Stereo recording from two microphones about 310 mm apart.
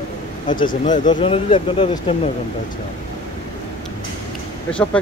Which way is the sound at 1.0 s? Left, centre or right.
Centre.